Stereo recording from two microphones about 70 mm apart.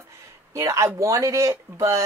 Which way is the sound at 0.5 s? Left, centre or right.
Right.